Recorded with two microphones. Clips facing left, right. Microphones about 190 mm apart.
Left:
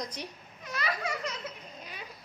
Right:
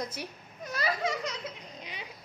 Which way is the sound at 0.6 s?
40° right (ahead or behind).